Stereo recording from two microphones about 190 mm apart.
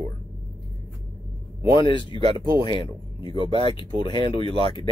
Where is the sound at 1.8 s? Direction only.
25° left (ahead or behind).